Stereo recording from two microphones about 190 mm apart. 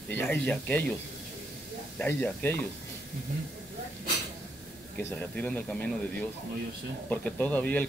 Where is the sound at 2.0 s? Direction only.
5° left (ahead or behind).